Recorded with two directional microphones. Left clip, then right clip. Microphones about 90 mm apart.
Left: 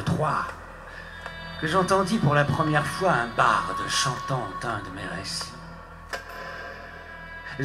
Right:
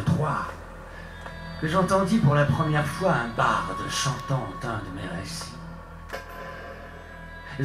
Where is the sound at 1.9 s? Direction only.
35° left (ahead or behind).